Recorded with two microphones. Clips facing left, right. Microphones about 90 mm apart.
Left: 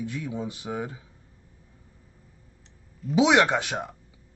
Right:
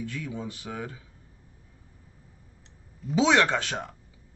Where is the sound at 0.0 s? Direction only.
20° left (ahead or behind).